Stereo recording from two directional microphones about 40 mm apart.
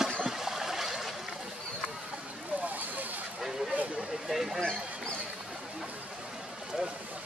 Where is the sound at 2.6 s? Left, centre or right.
Right.